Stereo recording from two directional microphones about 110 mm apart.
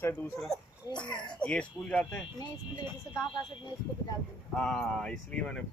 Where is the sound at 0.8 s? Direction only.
35° left (ahead or behind).